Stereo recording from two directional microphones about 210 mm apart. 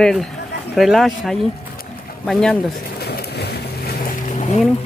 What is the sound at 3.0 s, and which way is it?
Boat, 50° left (ahead or behind).